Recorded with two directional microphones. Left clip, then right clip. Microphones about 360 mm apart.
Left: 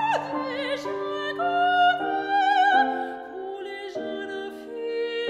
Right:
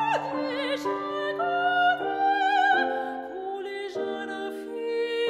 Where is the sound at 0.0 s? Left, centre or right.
Centre.